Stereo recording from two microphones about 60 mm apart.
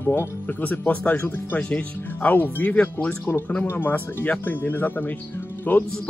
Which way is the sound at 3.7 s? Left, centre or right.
Left.